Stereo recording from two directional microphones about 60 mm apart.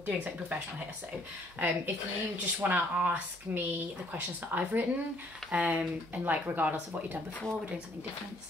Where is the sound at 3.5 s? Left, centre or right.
Right.